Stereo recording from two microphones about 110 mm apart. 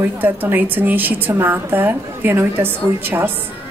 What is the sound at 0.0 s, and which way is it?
A woman's voice, 15° right (ahead or behind).